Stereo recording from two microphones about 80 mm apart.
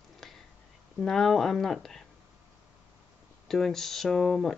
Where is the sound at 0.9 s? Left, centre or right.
Centre.